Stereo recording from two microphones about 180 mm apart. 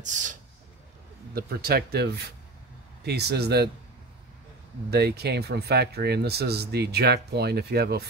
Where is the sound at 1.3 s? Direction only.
60° right (ahead or behind).